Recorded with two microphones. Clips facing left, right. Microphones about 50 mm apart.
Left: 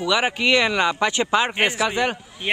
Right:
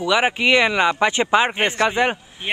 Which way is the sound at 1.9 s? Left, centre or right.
Right.